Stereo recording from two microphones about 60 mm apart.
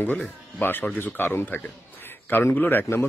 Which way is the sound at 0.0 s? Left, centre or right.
Left.